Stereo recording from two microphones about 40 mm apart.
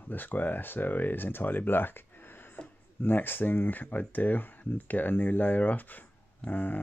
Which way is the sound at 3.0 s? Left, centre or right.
Left.